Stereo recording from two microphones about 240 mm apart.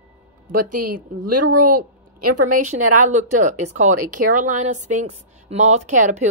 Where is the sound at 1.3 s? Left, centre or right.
Right.